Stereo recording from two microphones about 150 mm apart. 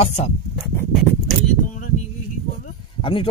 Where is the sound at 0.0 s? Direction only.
50° left (ahead or behind).